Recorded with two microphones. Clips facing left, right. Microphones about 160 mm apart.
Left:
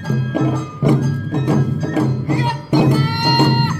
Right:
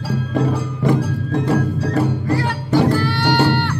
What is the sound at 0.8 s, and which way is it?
Music, 10° left (ahead or behind).